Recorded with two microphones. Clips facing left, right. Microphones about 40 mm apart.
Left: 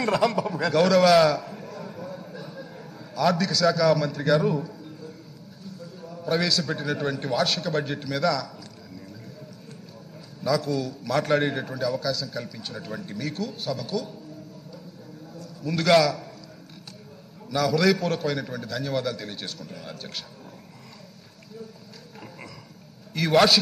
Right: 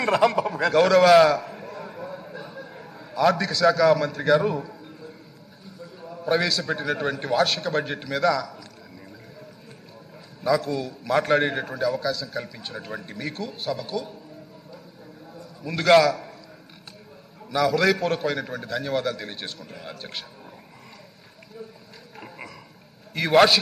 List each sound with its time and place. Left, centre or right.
0.0 s a sound: centre
5.8 s a man's voice: centre
10.6 s a man's voice: centre
15.3 s a sound: centre
15.9 s a man's voice: centre
17.5 s a man's voice: centre
23.1 s a man's voice: centre